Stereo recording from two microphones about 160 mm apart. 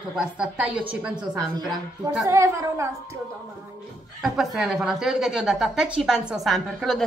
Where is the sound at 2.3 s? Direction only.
20° right (ahead or behind).